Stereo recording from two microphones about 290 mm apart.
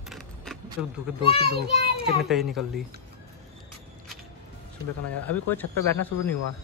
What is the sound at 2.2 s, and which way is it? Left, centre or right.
Speech, centre.